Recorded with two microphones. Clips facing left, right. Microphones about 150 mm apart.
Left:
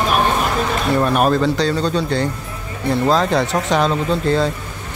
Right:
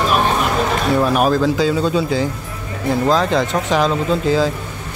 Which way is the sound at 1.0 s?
Centre (ahead or behind).